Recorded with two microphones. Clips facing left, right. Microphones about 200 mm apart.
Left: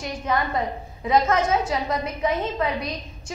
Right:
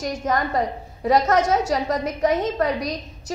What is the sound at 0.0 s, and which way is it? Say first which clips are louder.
A woman's voice: right 2 dB; 40° right (ahead or behind).